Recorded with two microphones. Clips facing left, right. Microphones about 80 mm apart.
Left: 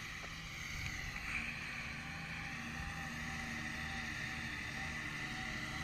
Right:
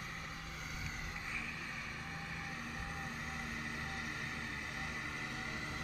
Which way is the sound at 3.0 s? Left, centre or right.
Centre.